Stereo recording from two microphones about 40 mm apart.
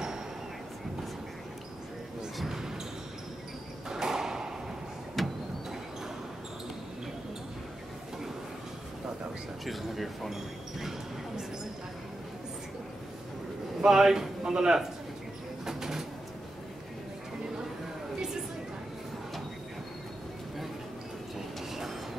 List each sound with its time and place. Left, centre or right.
2.3 s basketball bounce: centre
3.9 s ping: centre
5.2 s vehicle: centre
9.7 s speech: centre
13.7 s a man's voice: centre
15.6 s bird: centre